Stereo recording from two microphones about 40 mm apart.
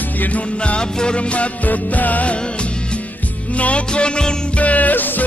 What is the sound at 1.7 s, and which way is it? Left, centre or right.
Music, left.